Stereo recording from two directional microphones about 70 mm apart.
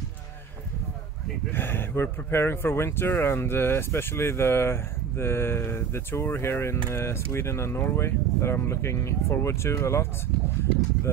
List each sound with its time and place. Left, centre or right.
1.5 s speech: left